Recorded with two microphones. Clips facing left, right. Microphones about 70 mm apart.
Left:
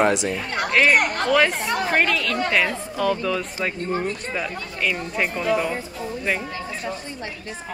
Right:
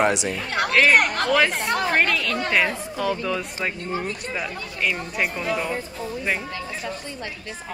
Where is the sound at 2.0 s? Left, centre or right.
Centre.